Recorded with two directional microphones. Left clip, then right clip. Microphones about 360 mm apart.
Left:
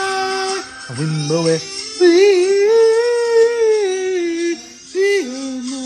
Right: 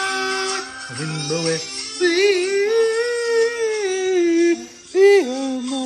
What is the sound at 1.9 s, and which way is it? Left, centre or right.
Music, centre.